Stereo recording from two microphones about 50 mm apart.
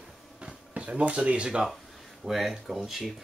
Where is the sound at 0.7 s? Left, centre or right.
Right.